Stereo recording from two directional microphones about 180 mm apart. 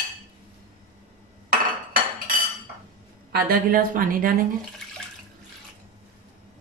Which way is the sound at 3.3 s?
55° right (ahead or behind).